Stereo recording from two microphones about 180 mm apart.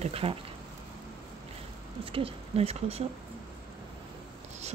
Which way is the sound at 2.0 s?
30° right (ahead or behind).